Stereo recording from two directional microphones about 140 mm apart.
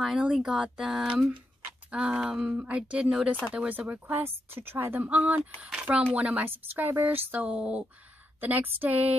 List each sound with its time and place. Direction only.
0.0 s speech: 5° right (ahead or behind)